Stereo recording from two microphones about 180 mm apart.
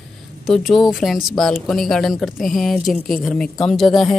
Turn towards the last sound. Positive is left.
turn(degrees=0)  # may be behind; listen again after turning